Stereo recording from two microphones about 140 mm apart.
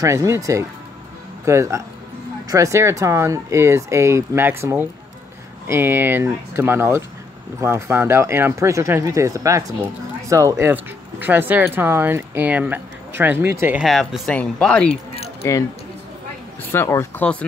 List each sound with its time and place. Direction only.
0.0 s speech: 25° right (ahead or behind)
13.7 s speech: centre (ahead or behind)
15.4 s speech: 20° left (ahead or behind)
16.7 s speech: 20° left (ahead or behind)